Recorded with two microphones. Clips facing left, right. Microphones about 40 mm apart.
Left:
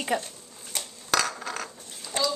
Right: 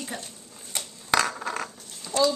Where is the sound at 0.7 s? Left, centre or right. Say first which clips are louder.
Right 2 dB; centre.